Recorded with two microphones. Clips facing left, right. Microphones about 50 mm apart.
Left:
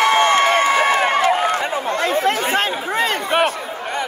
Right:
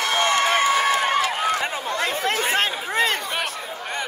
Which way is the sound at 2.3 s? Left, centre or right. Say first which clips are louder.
Left 3 dB; centre.